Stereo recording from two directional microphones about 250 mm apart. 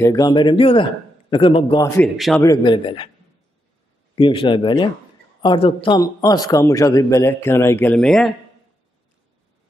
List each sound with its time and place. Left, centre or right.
0.0 s a man's voice: centre
2.0 s a man's voice: centre
2.4 s speech: centre
4.1 s a man's voice: left; by 8.3 s centre